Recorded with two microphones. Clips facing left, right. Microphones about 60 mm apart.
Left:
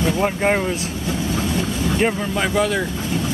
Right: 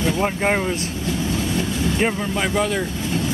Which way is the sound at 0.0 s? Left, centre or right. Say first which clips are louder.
Left 1 dB; centre.